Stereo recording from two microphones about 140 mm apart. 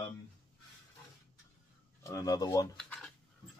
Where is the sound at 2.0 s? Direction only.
20° left (ahead or behind).